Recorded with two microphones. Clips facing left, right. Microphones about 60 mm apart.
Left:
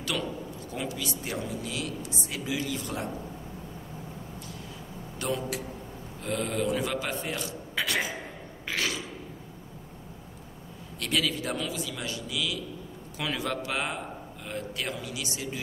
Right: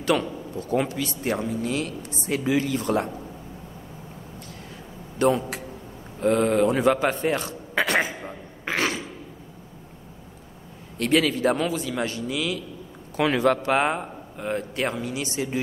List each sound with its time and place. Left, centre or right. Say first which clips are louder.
0.0 s a man's voice: right 8 dB; right
5.2 s a man's voice: right 9 dB; right
8.6 s throat clearing: right 6 dB; right
11.0 s a man's voice: right 8 dB; right